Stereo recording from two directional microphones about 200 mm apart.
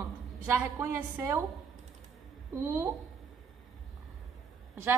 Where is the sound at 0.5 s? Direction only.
10° right (ahead or behind).